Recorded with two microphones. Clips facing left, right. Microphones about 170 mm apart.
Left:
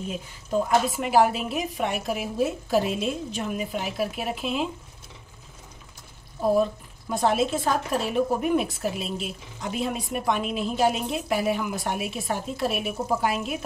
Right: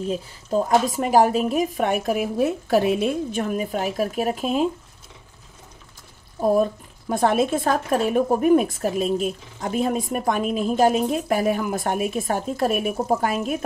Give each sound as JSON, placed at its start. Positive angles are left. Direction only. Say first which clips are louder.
{"t": 0.1, "sound": "a woman's voice", "louder": "right 2 dB", "side_deg": -35}
{"t": 6.4, "sound": "a woman's voice", "louder": "right 3 dB", "side_deg": -50}